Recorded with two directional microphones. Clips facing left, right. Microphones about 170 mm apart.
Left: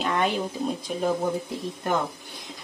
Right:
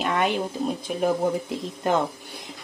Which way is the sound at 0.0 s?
5° right (ahead or behind).